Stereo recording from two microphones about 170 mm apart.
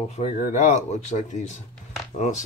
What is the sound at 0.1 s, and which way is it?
Speech, 45° left (ahead or behind).